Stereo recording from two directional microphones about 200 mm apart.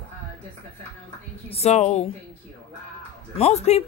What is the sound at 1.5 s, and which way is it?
Speech, 35° left (ahead or behind).